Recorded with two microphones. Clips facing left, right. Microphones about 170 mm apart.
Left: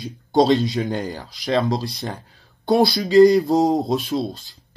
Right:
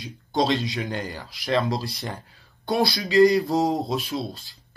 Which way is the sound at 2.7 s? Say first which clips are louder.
Left 6 dB; centre (ahead or behind).